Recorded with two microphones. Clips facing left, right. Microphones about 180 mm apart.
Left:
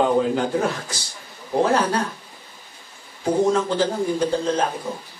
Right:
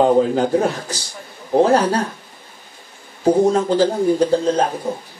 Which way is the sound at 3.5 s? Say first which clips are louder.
Right 5 dB; 35° right (ahead or behind).